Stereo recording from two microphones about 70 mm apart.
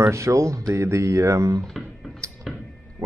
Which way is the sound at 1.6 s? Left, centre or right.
Centre.